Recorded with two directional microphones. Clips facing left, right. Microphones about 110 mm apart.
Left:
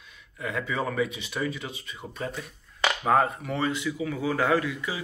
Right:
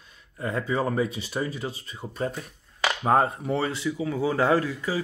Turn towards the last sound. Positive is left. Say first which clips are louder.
# right 2 dB
turn(degrees=-35)  # may be behind; listen again after turning